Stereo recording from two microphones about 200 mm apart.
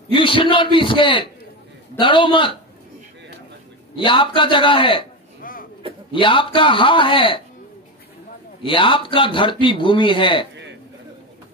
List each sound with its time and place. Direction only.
0.1 s a man's voice: 25° left (ahead or behind)
3.9 s a man's voice: 25° left (ahead or behind)
5.4 s a sound: 45° left (ahead or behind)
6.1 s a man's voice: 25° left (ahead or behind)
8.6 s a man's voice: 25° left (ahead or behind)
10.5 s a sound: 60° right (ahead or behind)